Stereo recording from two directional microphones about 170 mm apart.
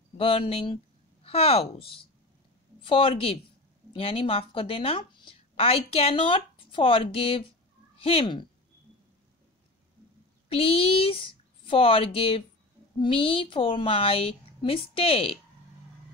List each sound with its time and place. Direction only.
0.2 s a woman's voice: 35° left (ahead or behind)
10.5 s a woman's voice: 35° left (ahead or behind)